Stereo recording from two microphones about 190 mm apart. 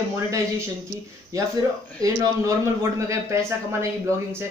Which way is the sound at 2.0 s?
20° right (ahead or behind).